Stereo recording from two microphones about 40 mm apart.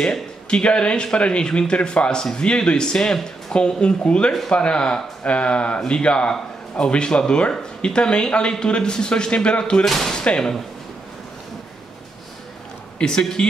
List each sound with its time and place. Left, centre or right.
0.0 s speech: left
9.8 s speech: centre
10.1 s speech: left
13.0 s speech: centre